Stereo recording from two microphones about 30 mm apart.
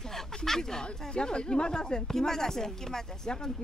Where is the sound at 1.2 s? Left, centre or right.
Left.